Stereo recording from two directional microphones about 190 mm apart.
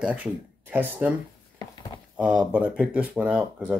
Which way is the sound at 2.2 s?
5° right (ahead or behind).